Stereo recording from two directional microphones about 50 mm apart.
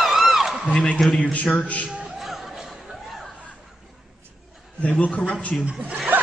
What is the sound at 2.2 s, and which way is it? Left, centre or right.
Music, centre.